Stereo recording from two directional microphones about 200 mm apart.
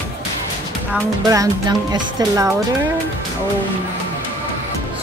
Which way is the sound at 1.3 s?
20° right (ahead or behind).